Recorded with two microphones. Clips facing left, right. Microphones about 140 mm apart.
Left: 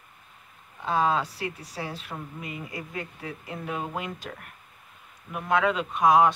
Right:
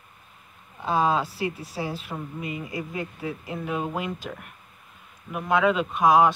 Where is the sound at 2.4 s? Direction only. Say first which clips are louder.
Right 5 dB; 20° right (ahead or behind).